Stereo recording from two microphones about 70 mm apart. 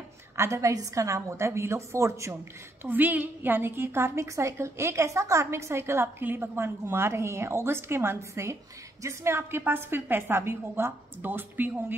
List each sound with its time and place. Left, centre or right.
0.4 s a woman's voice: right
2.8 s a woman's voice: right